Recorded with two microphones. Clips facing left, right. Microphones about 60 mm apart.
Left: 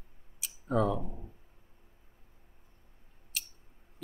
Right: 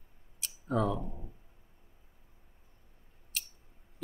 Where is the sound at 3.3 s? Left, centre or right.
Centre.